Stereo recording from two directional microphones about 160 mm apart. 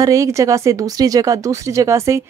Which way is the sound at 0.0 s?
20° right (ahead or behind).